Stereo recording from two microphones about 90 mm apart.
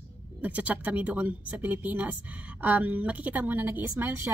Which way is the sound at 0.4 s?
15° right (ahead or behind).